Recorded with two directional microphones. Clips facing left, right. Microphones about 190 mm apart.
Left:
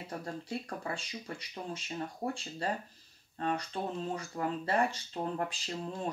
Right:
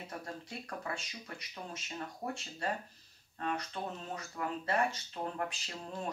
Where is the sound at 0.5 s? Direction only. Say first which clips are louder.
Left 4 dB; 30° left (ahead or behind).